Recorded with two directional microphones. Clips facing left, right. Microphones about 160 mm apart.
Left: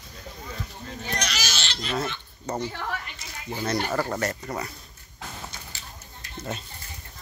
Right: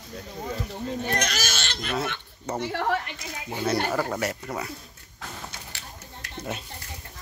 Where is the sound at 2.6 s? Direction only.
70° right (ahead or behind); by 3.4 s 55° right (ahead or behind).